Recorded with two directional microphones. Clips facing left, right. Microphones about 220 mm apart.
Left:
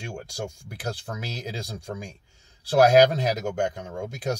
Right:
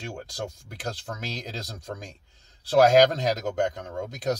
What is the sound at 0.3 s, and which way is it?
Speech, 10° left (ahead or behind).